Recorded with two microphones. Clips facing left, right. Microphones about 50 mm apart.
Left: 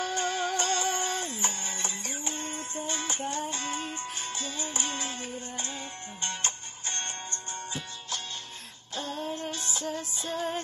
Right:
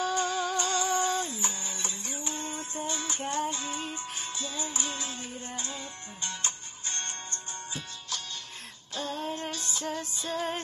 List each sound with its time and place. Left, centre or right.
0.0 s music: left
8.9 s female singing: left
9.2 s music: right
9.5 s music: left
10.3 s music: right